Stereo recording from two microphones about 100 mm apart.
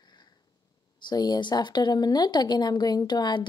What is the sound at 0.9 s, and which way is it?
Speech, 45° left (ahead or behind).